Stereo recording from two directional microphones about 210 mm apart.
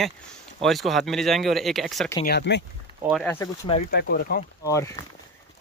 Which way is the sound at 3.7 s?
30° left (ahead or behind).